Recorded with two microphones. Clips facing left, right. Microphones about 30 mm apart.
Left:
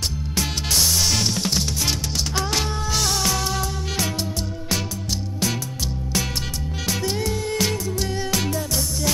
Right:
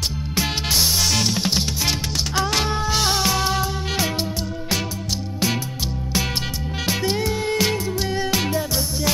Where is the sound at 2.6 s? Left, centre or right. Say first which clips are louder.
Right 3 dB; right.